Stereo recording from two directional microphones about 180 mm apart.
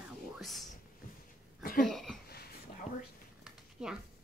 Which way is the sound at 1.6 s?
55° left (ahead or behind).